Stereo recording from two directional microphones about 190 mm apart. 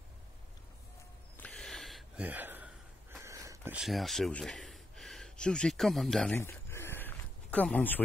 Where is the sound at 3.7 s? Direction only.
Centre (ahead or behind).